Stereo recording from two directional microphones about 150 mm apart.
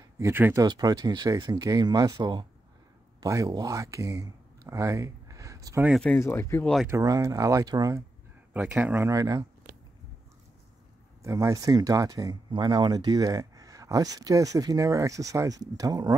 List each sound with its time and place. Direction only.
0.2 s speech: 15° right (ahead or behind)
0.7 s speech: 25° right (ahead or behind)
6.1 s speech: 20° left (ahead or behind)
6.9 s speech: 25° right (ahead or behind)
8.5 s speech: 10° right (ahead or behind)
11.2 s speech: 20° right (ahead or behind)